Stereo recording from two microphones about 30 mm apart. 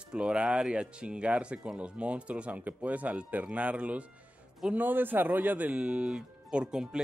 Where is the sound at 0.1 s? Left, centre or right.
Right.